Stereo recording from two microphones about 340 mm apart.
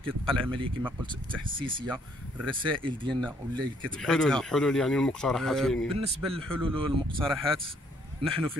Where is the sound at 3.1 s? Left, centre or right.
Centre.